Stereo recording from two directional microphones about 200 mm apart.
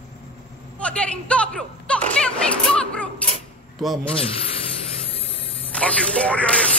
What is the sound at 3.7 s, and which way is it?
Speech, centre (ahead or behind).